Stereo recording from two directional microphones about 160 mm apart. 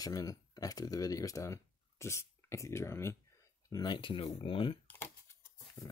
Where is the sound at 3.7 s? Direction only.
25° left (ahead or behind).